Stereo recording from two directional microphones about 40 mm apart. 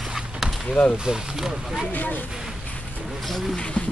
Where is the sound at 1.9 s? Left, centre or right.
Left.